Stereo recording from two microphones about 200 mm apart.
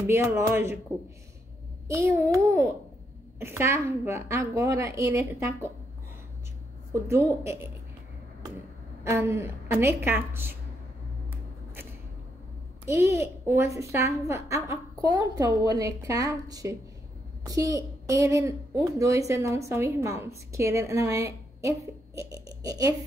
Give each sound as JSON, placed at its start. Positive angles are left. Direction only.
{"t": 0.0, "sound": "a woman's voice", "side_deg": -10}
{"t": 1.9, "sound": "a woman's voice", "side_deg": -15}
{"t": 6.9, "sound": "a woman's voice", "side_deg": -15}
{"t": 9.0, "sound": "a woman's voice", "side_deg": -15}
{"t": 12.8, "sound": "a woman's voice", "side_deg": -15}